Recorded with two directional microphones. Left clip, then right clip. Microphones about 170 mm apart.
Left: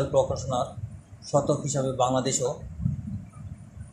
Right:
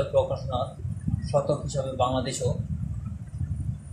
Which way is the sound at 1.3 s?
30° left (ahead or behind).